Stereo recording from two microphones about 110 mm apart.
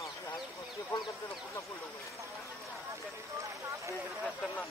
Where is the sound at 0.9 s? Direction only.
15° left (ahead or behind).